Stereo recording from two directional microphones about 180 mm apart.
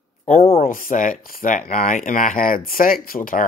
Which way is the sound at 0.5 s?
50° left (ahead or behind).